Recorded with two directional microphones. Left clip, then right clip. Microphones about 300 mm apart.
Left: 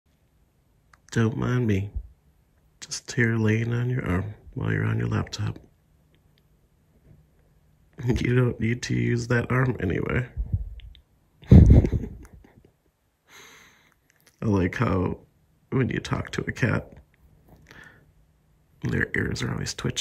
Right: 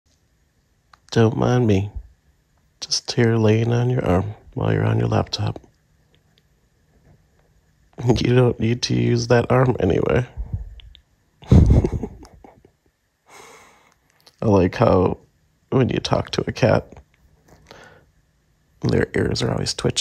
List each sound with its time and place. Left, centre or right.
0.9 s speech: centre
7.9 s speech: centre
10.8 s a sound: centre
15.7 s speech: centre
17.6 s a sound: centre
18.8 s speech: centre